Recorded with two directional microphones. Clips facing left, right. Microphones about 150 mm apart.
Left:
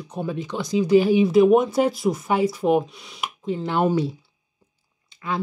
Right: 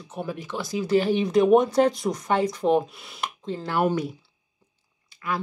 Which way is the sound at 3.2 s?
10° left (ahead or behind).